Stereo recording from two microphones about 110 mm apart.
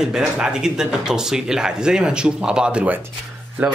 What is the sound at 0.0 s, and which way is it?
Speech, 5° right (ahead or behind).